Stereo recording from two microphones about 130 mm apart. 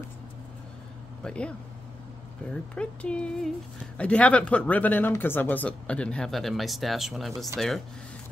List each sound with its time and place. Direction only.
1.2 s speech: 10° left (ahead or behind)
2.5 s speech: 10° left (ahead or behind)